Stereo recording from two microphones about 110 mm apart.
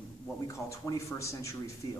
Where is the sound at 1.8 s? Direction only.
45° left (ahead or behind).